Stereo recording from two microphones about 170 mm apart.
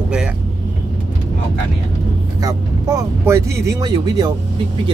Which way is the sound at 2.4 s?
15° right (ahead or behind).